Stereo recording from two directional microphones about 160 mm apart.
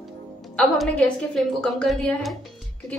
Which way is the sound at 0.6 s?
5° left (ahead or behind).